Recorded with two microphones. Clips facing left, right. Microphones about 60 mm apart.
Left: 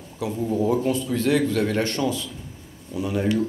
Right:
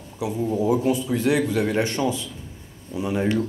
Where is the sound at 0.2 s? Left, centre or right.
Centre.